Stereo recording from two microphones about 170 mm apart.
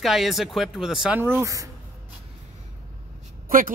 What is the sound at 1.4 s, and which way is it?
Speech, 20° right (ahead or behind).